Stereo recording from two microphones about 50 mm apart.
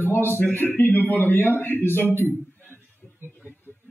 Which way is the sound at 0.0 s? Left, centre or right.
Left.